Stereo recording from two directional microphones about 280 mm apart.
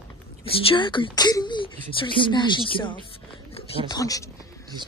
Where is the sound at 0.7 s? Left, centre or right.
Centre.